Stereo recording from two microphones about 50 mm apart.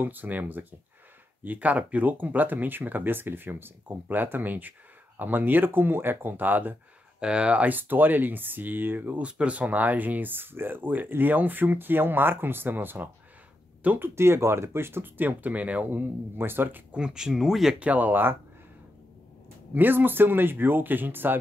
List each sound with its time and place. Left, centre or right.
0.0 s speech: right
7.2 s speech: right
7.7 s speech: right
9.2 s speech: right
13.9 s speech: right
15.2 s speech: right
16.9 s speech: centre
17.3 s speech: centre
17.7 s speech: right
19.7 s speech: right